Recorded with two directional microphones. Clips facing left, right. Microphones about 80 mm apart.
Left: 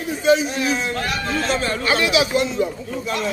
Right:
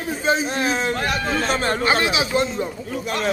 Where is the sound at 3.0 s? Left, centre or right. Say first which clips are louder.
Even; right.